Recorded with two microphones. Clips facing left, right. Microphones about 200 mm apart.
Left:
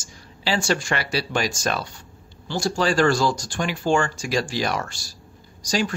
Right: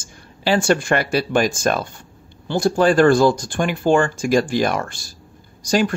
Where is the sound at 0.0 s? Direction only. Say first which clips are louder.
Right 6 dB; 55° right (ahead or behind).